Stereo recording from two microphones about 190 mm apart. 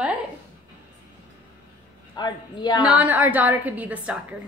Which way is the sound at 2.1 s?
20° left (ahead or behind).